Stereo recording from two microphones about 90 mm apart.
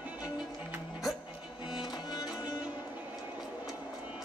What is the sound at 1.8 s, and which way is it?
Music, 55° left (ahead or behind).